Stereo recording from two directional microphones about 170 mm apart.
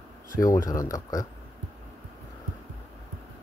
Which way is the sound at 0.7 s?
20° left (ahead or behind).